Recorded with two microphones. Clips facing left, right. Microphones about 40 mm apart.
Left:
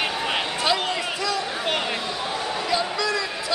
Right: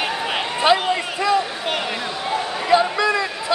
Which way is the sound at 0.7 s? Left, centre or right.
Right.